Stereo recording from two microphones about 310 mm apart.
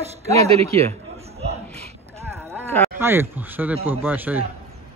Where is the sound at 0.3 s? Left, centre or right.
Centre.